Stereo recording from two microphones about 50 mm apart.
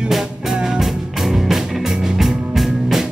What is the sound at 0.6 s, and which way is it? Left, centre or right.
Music, centre.